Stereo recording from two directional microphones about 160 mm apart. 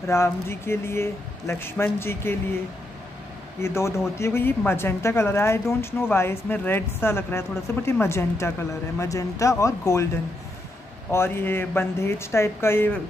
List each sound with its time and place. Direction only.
0.0 s a woman's voice: 15° left (ahead or behind)
3.6 s a woman's voice: 15° left (ahead or behind)
11.1 s a woman's voice: 15° left (ahead or behind)